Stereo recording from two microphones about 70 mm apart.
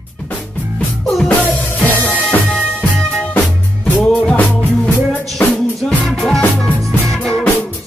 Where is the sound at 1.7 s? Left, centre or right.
Left.